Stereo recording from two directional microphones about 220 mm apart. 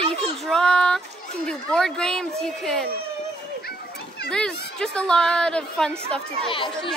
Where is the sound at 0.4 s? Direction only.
Centre (ahead or behind).